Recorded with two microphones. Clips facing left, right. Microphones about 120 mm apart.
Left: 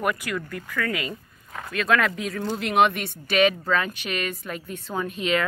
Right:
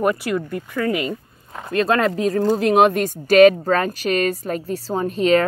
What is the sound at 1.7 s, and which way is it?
Speech, 35° right (ahead or behind).